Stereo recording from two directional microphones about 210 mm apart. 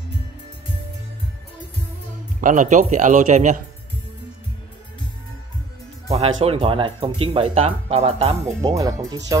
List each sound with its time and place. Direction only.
2.4 s a man's voice: 35° right (ahead or behind)
6.0 s music: 30° right (ahead or behind)
6.4 s speech: 25° right (ahead or behind)
8.5 s speech: 15° right (ahead or behind)